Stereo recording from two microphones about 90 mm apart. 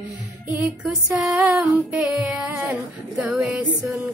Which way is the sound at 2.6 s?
15° right (ahead or behind).